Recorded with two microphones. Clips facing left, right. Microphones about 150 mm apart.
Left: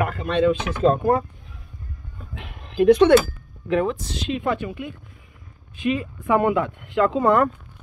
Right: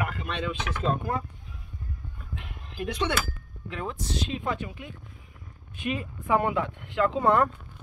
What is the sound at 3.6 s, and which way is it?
Speech, 80° left.